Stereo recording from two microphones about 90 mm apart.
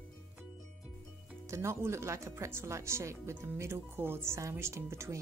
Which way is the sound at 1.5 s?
30° right (ahead or behind).